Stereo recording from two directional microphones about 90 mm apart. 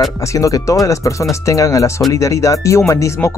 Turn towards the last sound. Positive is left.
turn(degrees=35)  # may be behind; listen again after turning